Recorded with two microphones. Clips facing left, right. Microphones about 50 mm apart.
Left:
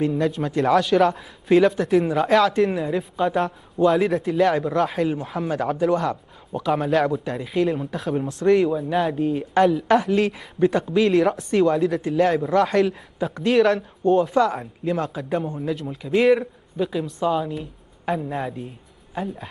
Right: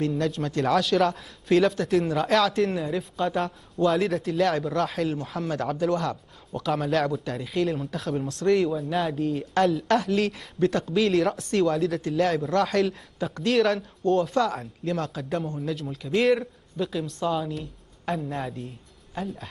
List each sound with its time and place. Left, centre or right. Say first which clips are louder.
0.0 s speech: left 4 dB; centre
18.4 s speech: left 4 dB; centre
19.2 s speech: left 4 dB; centre